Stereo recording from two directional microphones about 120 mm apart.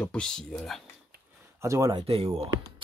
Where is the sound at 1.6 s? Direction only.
25° right (ahead or behind).